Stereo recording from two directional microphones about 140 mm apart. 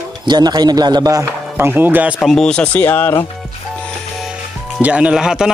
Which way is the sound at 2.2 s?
5° left (ahead or behind).